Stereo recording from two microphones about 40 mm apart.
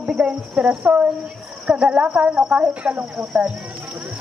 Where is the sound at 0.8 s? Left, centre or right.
Right.